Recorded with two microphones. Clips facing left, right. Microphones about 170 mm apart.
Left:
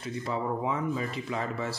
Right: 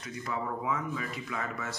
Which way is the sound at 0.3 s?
30° left (ahead or behind).